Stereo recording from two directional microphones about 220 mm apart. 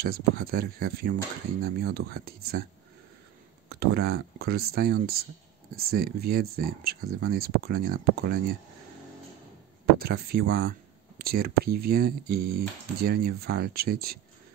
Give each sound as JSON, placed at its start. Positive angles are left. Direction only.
{"t": 0.0, "sound": "speech", "side_deg": -45}
{"t": 3.6, "sound": "speech", "side_deg": -45}
{"t": 9.9, "sound": "speech", "side_deg": -45}